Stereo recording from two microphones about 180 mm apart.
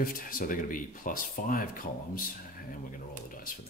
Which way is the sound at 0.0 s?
50° left (ahead or behind).